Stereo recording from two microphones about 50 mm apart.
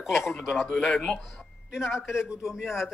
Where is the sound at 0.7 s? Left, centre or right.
Centre.